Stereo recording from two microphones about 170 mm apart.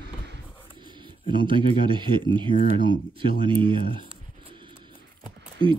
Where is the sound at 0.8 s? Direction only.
25° right (ahead or behind).